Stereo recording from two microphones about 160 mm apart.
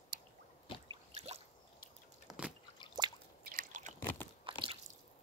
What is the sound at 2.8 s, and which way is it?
Drip, 30° left (ahead or behind).